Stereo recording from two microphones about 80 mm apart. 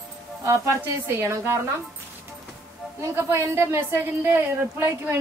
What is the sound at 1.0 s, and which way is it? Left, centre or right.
Speech, right.